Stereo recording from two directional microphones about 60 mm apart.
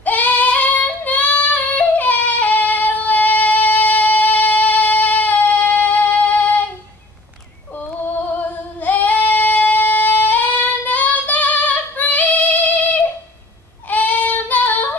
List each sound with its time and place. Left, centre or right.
0.0 s female singing: left
8.4 s female singing: left
13.8 s child singing: left